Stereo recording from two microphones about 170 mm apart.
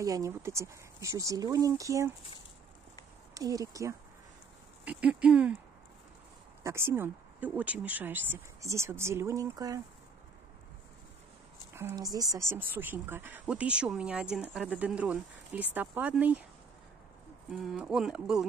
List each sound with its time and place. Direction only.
0.0 s speech: 20° right (ahead or behind)
3.3 s speech: 20° right (ahead or behind)
4.8 s speech: 5° right (ahead or behind)
6.6 s speech: 15° right (ahead or behind)
11.7 s speech: 15° right (ahead or behind)
17.5 s speech: centre (ahead or behind)